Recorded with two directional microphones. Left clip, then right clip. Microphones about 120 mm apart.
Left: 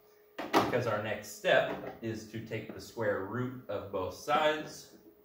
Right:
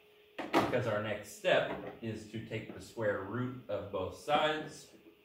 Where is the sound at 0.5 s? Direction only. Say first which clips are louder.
Left 2 dB; 15° left (ahead or behind).